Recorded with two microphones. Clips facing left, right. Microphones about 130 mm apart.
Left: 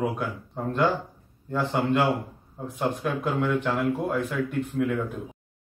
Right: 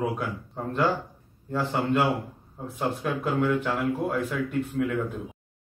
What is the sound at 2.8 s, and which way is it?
Speech, centre (ahead or behind).